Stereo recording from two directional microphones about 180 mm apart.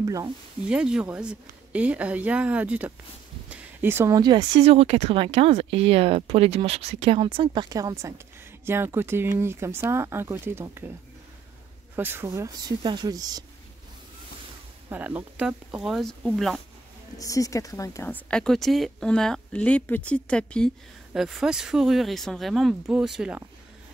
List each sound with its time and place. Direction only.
0.0 s speech: 20° right (ahead or behind)
0.7 s speech: 5° right (ahead or behind)
11.9 s speech: 10° right (ahead or behind)
14.9 s a woman's voice: 10° right (ahead or behind)
17.2 s a woman's voice: 20° left (ahead or behind); by 23.4 s 5° right (ahead or behind)